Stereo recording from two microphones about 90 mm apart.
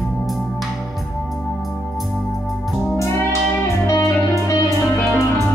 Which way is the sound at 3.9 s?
35° left (ahead or behind).